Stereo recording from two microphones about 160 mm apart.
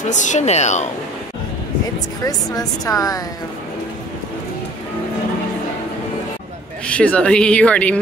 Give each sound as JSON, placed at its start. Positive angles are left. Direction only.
{"t": 0.1, "sound": "speech", "side_deg": 50}
{"t": 2.2, "sound": "a woman's voice", "side_deg": 25}
{"t": 6.9, "sound": "speech", "side_deg": 10}